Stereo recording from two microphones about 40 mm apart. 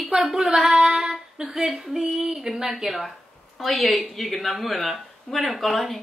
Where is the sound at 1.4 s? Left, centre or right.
Centre.